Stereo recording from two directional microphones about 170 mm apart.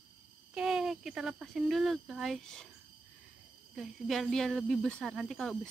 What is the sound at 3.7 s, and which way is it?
Speech, centre (ahead or behind).